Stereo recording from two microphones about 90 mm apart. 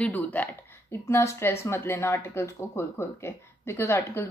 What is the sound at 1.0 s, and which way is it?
A woman's voice, 30° left (ahead or behind).